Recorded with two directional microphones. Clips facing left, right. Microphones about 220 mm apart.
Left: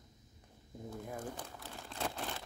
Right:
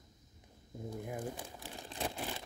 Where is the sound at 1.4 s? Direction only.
15° right (ahead or behind).